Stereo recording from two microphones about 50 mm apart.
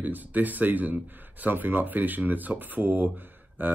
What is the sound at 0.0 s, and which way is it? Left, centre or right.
Speech, right.